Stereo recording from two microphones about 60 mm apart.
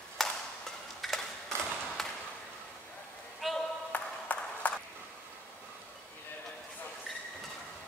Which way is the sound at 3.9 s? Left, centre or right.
Left.